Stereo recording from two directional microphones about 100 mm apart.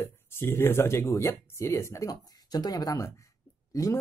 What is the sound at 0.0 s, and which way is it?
Speech, 25° left (ahead or behind).